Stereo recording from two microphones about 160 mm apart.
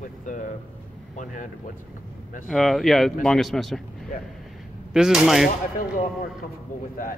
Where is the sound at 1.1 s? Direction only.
50° left (ahead or behind).